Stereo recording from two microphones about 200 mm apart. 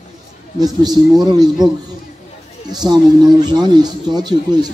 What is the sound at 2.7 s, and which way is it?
A man's voice, 20° right (ahead or behind).